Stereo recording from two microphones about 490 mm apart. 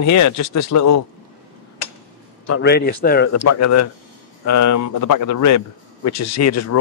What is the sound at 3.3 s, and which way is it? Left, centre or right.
A man's voice, left.